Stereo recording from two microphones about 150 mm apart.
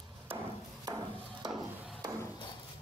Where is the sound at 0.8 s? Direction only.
25° right (ahead or behind).